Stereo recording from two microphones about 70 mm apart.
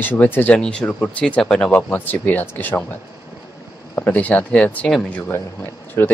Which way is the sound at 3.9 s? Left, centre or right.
Left.